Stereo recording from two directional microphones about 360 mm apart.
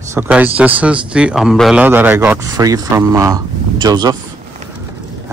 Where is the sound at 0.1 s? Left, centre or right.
Centre.